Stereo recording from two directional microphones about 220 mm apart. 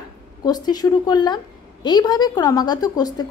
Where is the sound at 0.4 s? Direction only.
15° left (ahead or behind).